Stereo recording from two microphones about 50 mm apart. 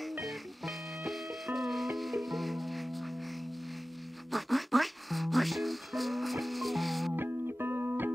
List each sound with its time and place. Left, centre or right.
0.2 s music: centre
4.3 s music: centre
7.2 s music: right